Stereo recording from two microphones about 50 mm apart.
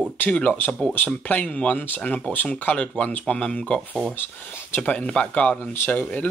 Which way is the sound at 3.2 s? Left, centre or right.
Centre.